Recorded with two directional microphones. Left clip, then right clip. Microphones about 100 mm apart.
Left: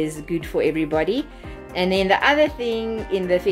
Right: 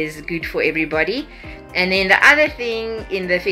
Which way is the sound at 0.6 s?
35° left (ahead or behind).